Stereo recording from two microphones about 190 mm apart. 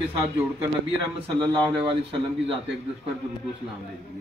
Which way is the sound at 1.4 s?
25° right (ahead or behind).